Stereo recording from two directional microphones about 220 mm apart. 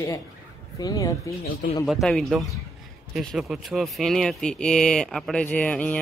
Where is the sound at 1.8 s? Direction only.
Centre (ahead or behind).